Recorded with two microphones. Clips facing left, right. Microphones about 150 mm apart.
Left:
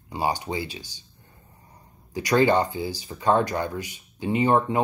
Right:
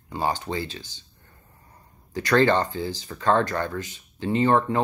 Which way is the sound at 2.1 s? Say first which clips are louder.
Even; 15° left (ahead or behind).